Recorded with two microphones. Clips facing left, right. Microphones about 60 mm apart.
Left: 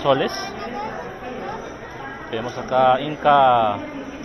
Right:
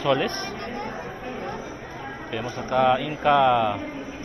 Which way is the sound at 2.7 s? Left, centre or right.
Right.